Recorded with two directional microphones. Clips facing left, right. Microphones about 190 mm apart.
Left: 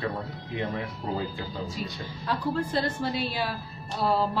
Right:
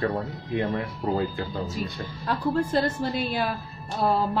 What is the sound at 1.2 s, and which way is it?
A man's voice, 55° right (ahead or behind).